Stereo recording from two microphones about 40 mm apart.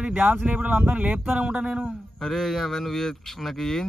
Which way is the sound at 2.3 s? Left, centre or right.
Centre.